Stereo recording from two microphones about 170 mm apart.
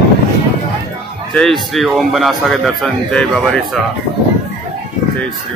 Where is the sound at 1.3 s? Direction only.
5° left (ahead or behind).